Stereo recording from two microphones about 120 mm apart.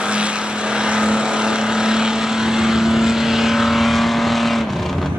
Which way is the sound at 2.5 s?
5° right (ahead or behind).